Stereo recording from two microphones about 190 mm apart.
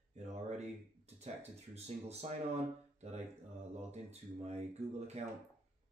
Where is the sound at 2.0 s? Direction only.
35° right (ahead or behind).